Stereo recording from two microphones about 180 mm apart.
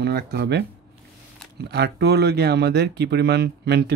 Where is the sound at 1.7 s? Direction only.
65° right (ahead or behind).